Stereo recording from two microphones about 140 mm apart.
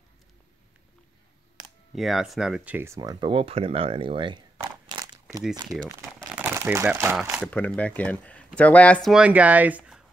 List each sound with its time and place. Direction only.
2.0 s speech: centre (ahead or behind)
3.0 s speech: 30° right (ahead or behind)
4.8 s a sound: 25° right (ahead or behind)
5.4 s speech: 5° right (ahead or behind)
6.3 s crumpling: 15° right (ahead or behind)
7.2 s speech: 5° right (ahead or behind)
7.4 s speech: 10° left (ahead or behind)
9.1 s speech: 10° right (ahead or behind)